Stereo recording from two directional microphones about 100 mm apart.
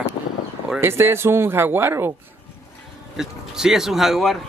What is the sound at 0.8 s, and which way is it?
Speech, 25° right (ahead or behind).